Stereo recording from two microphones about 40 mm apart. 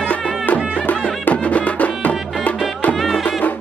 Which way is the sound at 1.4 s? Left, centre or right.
Left.